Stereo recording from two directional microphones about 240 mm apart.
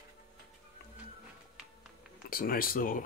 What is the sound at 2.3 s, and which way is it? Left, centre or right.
Speech, left.